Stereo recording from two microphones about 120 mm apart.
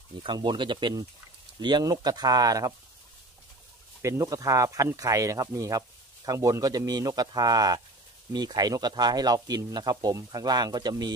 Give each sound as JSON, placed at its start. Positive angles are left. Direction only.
{"t": 0.2, "sound": "speech", "side_deg": -40}
{"t": 4.0, "sound": "speech", "side_deg": -25}